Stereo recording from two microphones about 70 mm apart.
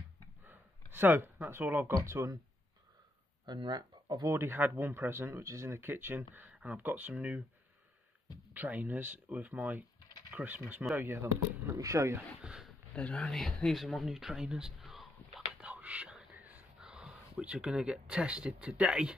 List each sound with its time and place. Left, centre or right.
0.5 s speech: right
3.4 s speech: right
4.3 s speech: right
5.4 s speech: right
8.5 s speech: right
11.7 s speech: right
12.4 s a sound: centre
12.9 s speech: centre
13.2 s speech: centre
15.6 s whispering: centre
16.3 s a sound: right
16.8 s speech: centre